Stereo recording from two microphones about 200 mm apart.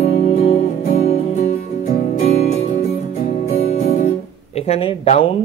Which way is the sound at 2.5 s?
40° left (ahead or behind).